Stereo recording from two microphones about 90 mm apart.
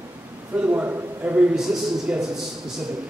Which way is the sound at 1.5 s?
5° right (ahead or behind).